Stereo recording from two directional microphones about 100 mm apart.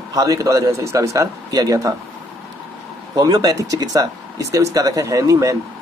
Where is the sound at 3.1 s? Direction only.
40° right (ahead or behind).